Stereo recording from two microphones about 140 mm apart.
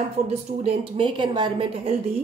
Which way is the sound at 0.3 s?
45° right (ahead or behind).